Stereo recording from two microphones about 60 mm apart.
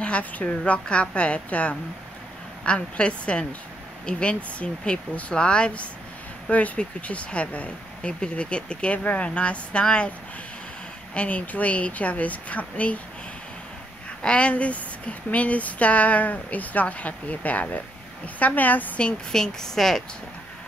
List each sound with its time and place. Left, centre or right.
0.0 s speech: left
11.1 s speech: left
14.2 s speech: centre